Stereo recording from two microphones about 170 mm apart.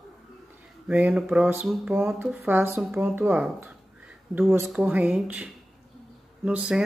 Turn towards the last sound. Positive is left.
turn(degrees=-5)  # may be behind; listen again after turning